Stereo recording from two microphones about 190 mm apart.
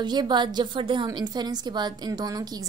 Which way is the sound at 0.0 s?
25° right (ahead or behind).